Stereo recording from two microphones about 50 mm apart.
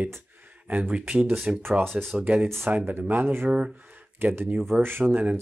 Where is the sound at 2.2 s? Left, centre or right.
Right.